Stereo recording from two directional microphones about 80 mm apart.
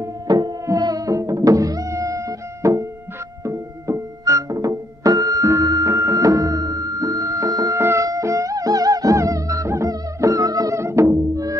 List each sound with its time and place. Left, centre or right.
0.3 s music: right
10.8 s music: right